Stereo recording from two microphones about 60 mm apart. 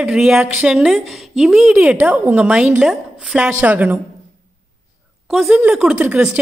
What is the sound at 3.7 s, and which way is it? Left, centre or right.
Speech, right.